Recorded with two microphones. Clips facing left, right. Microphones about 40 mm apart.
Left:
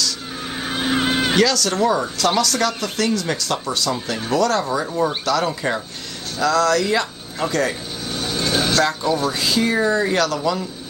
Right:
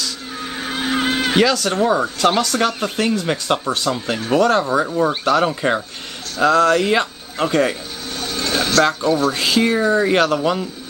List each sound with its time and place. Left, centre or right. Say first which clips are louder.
0.4 s vehicle: right 1 dB; centre
1.3 s speech: right 4 dB; right
8.1 s music: even; centre
9.3 s speech: right 2 dB; right